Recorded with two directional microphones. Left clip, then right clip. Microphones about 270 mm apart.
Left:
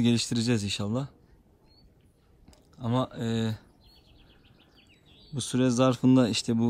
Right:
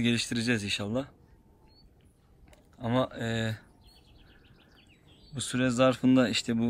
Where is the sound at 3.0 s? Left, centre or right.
Centre.